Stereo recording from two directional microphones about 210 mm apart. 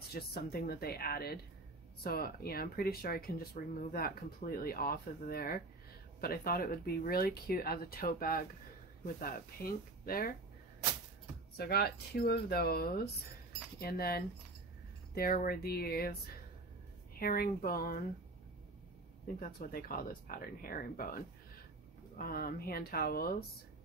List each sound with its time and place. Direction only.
0.1 s speech: 45° left (ahead or behind)
11.5 s speech: 50° left (ahead or behind)
17.2 s speech: 45° left (ahead or behind)
19.4 s speech: 45° left (ahead or behind)
22.2 s speech: 45° left (ahead or behind)